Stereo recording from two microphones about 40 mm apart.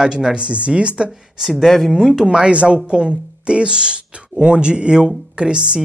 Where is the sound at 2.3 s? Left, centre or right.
Right.